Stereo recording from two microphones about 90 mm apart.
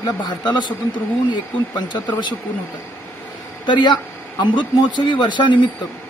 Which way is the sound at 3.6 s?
55° left (ahead or behind).